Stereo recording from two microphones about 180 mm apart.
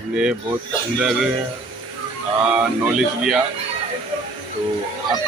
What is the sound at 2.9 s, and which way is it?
Speech, 5° right (ahead or behind).